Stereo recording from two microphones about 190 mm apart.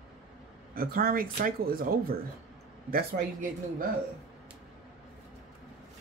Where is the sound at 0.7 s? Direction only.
50° right (ahead or behind).